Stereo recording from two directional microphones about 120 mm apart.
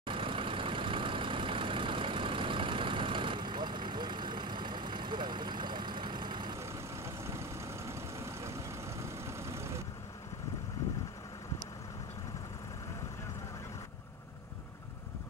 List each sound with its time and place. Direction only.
0.0 s vehicle: 45° right (ahead or behind)
6.6 s vehicle: 25° right (ahead or behind)